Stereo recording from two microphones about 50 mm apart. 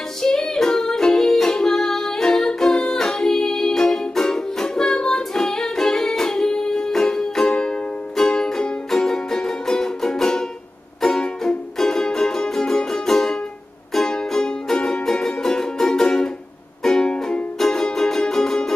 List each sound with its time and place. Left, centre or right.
0.4 s music: centre